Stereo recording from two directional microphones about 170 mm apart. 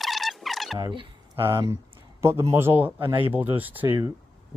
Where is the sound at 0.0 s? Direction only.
Centre (ahead or behind).